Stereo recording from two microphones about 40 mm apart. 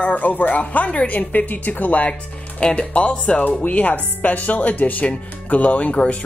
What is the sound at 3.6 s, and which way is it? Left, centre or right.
A woman's voice, left.